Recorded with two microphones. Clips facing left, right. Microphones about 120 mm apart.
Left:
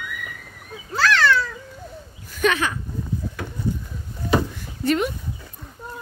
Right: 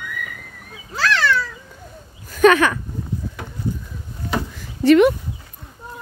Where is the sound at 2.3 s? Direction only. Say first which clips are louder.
Right 8 dB; 50° right (ahead or behind).